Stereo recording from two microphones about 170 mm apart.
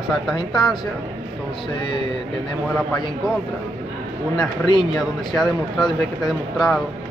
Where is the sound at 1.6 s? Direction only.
30° left (ahead or behind).